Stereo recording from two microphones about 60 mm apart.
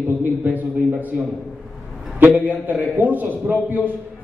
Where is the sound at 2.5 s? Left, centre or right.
Right.